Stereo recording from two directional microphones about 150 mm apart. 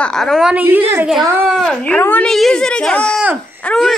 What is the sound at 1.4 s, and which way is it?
A woman's voice, 5° left (ahead or behind).